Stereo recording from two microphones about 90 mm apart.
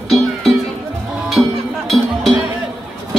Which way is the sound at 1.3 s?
Centre (ahead or behind).